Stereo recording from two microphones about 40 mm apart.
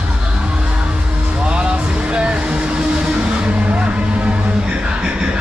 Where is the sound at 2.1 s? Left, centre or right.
Right.